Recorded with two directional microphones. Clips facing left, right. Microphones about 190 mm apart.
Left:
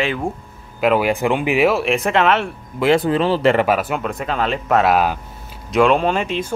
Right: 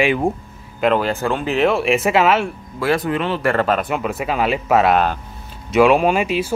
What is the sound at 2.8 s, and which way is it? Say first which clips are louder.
Speech: left 4 dB; 25° left (ahead or behind).